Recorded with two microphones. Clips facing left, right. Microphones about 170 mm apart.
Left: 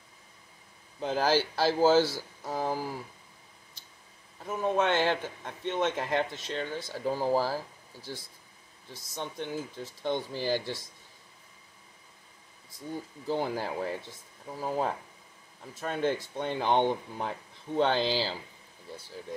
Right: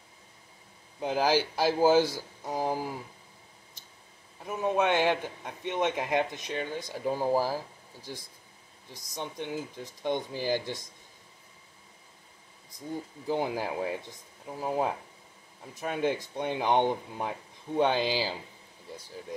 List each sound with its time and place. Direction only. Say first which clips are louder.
1.0 s a man's voice: right 1 dB; 10° right (ahead or behind)
4.5 s a man's voice: right 1 dB; 15° right (ahead or behind)
13.3 s a man's voice: right 1 dB; 10° right (ahead or behind)